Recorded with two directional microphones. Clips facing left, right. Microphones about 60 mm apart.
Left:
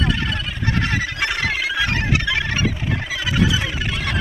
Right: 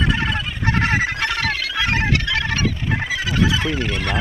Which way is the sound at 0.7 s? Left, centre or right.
Right.